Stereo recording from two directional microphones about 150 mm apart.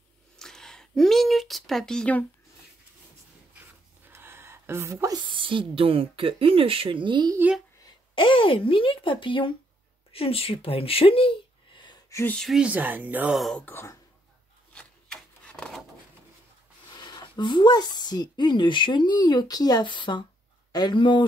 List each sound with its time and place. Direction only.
0.4 s a sound: 5° left (ahead or behind)
3.5 s a sound: 15° right (ahead or behind)
5.3 s speech: 35° right (ahead or behind)
7.3 s speech: 10° right (ahead or behind)
7.8 s a woman's voice: 35° left (ahead or behind)
12.1 s speech: 15° left (ahead or behind)
12.4 s speech: 5° right (ahead or behind)
13.4 s speech: centre (ahead or behind)
13.7 s speech: 15° left (ahead or behind)
14.7 s rub: 5° left (ahead or behind)
16.9 s speech: 30° left (ahead or behind)